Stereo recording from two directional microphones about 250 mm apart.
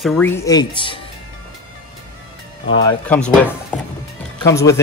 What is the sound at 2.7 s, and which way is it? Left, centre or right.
Speech, centre.